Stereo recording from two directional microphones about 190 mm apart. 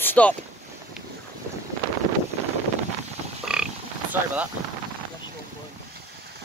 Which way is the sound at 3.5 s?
5° right (ahead or behind).